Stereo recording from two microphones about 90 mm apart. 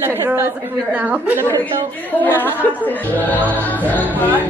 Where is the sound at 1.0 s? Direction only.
15° right (ahead or behind).